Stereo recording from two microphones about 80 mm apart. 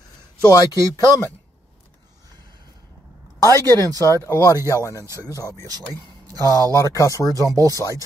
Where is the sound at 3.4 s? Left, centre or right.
Right.